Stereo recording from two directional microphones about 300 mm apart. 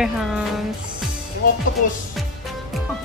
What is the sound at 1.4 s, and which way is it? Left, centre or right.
Music, left.